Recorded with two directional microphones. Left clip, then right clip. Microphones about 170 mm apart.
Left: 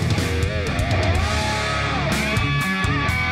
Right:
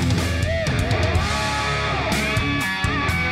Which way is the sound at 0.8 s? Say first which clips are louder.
Even; centre (ahead or behind).